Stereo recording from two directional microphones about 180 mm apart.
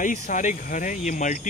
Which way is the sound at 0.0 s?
45° left (ahead or behind).